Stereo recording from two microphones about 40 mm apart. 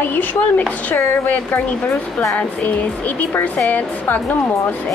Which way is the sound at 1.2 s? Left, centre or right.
Left.